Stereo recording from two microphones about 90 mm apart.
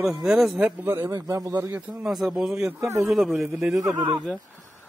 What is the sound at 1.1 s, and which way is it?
Speech, 40° right (ahead or behind).